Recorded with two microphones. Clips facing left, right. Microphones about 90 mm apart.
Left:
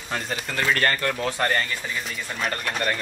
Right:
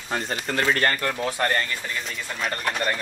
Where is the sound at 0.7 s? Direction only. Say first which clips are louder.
Even; 20° right (ahead or behind).